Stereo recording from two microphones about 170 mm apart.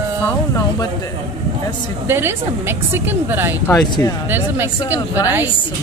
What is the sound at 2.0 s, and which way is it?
A woman's voice, 15° right (ahead or behind).